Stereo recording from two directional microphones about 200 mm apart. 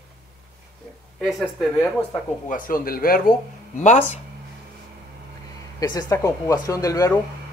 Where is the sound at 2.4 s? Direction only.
45° left (ahead or behind).